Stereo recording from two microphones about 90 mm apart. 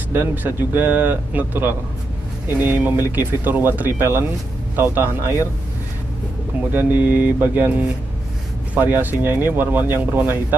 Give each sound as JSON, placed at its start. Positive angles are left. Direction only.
{"t": 0.1, "sound": "speech", "side_deg": -25}
{"t": 6.7, "sound": "speech", "side_deg": -20}